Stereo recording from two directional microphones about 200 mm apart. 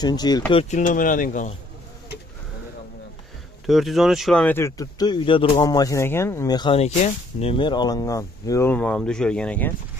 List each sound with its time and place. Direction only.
0.0 s speech: 20° left (ahead or behind)
0.5 s speech: 30° left (ahead or behind)
3.6 s speech: centre (ahead or behind)